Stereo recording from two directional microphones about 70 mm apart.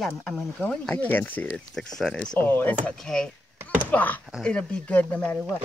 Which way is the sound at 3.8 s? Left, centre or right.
Left.